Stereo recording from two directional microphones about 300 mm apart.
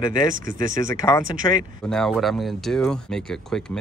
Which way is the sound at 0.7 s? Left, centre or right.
Centre.